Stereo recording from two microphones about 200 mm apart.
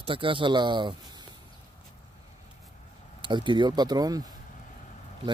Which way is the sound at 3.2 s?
25° right (ahead or behind).